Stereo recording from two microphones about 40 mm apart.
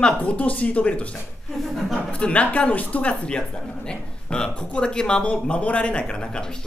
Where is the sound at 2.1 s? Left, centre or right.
Left.